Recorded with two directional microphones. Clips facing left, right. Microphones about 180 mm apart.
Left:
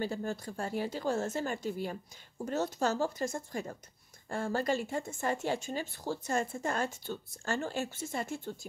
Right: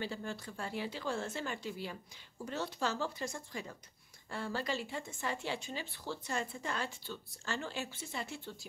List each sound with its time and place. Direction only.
0.0 s speech: 45° left (ahead or behind)